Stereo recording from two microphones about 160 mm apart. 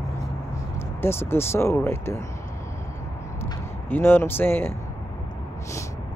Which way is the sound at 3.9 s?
15° left (ahead or behind).